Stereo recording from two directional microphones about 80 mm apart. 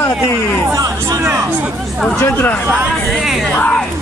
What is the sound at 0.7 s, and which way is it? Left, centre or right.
Music, right.